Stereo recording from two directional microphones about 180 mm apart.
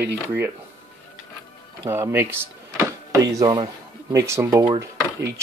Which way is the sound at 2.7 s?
20° right (ahead or behind).